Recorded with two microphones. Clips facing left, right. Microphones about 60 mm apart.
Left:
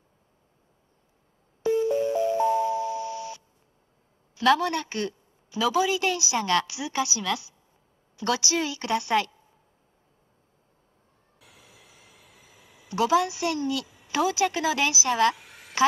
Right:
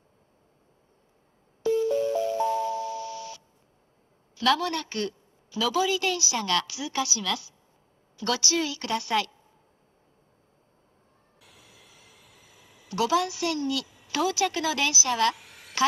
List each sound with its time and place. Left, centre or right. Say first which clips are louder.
1.6 s music: left 1 dB; centre
4.4 s a woman's voice: left 3 dB; centre
11.6 s a sound: left 1 dB; centre